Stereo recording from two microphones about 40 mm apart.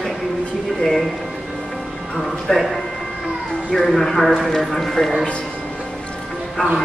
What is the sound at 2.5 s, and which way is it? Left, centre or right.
Speech, centre.